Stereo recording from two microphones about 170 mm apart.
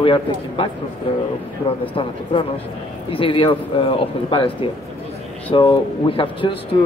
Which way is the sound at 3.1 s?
30° left (ahead or behind).